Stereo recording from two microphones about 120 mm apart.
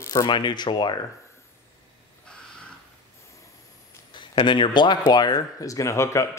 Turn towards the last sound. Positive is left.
turn(degrees=25)  # may be behind; listen again after turning